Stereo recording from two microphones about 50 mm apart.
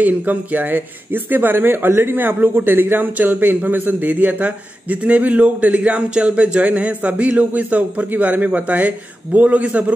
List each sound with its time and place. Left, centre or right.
0.0 s speech: right